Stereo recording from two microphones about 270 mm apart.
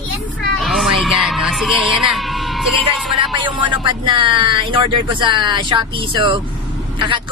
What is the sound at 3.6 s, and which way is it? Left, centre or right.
Speech, centre.